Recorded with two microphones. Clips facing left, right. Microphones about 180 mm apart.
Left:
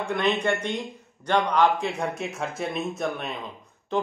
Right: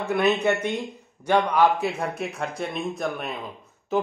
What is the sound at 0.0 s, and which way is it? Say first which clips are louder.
A man's voice: right 3 dB; 5° right (ahead or behind).